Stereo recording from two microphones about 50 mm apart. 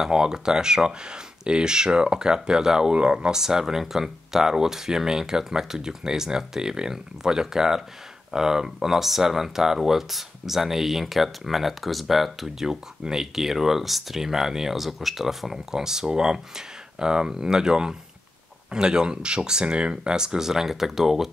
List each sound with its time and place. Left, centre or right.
0.0 s speech: centre